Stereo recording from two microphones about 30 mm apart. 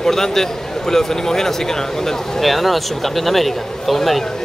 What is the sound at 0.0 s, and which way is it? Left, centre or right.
A man's voice, centre.